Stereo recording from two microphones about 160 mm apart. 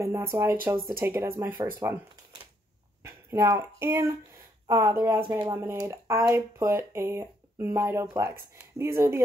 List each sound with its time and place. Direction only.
0.0 s speech: 15° right (ahead or behind)
3.0 s speech: 20° right (ahead or behind)